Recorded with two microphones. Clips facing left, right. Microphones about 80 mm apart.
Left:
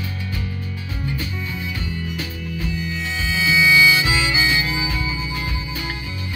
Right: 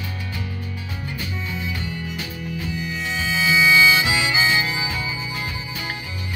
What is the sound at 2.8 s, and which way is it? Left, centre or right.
Harmonica, centre.